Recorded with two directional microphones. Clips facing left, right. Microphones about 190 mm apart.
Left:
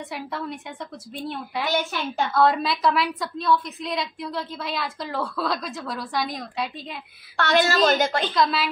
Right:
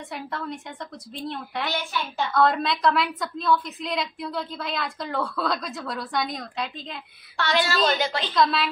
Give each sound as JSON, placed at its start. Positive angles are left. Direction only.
{"t": 0.1, "sound": "a woman's voice", "side_deg": 5}
{"t": 1.7, "sound": "a woman's voice", "side_deg": 45}
{"t": 2.3, "sound": "a woman's voice", "side_deg": 0}
{"t": 7.3, "sound": "a woman's voice", "side_deg": 50}
{"t": 8.4, "sound": "a woman's voice", "side_deg": 0}